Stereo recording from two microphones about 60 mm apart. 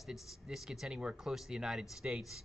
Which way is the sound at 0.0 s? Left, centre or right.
Centre.